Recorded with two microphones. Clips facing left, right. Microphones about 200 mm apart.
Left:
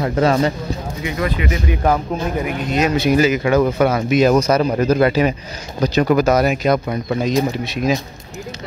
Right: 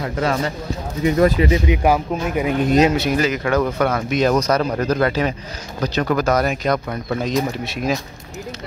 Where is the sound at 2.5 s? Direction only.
25° right (ahead or behind).